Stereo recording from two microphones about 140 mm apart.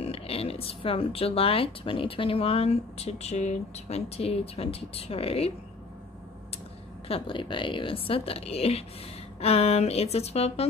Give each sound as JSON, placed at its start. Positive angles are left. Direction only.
{"t": 0.0, "sound": "speech", "side_deg": 45}
{"t": 7.1, "sound": "speech", "side_deg": 40}